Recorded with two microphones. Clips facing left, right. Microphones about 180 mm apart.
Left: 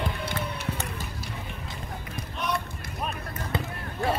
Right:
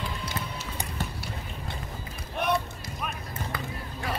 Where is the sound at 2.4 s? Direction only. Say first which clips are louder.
Right 4 dB; 55° right (ahead or behind).